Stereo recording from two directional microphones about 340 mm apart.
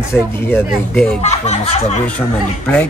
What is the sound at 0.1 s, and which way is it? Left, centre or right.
Speech, centre.